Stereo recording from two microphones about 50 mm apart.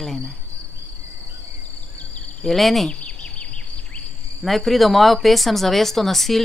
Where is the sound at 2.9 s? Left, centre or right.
Left.